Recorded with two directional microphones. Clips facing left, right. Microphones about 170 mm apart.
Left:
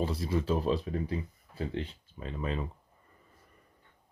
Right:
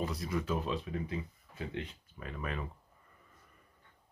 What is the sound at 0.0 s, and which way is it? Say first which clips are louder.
Speech: left 4 dB; 30° left (ahead or behind).